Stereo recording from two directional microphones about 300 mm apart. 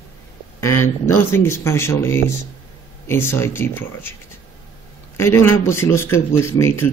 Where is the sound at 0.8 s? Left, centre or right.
Centre.